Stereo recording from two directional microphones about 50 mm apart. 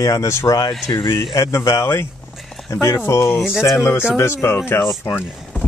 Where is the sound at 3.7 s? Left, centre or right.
Left.